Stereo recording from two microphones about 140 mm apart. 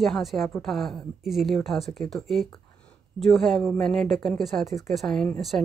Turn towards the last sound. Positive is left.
turn(degrees=5)  # may be behind; listen again after turning